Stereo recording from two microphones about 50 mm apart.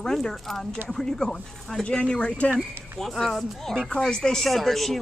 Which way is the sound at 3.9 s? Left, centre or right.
Centre.